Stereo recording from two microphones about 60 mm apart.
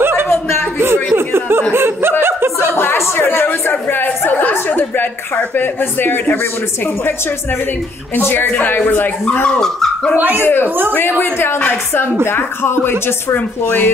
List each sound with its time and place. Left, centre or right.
0.0 s a sound: right
1.7 s snicker: right
2.2 s chuckle: right
2.7 s a sound: left
8.2 s speech: left
9.5 s speech: centre
10.1 s speech: right
10.4 s speech: left
13.7 s speech: left